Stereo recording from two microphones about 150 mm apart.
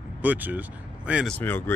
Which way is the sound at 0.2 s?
10° right (ahead or behind).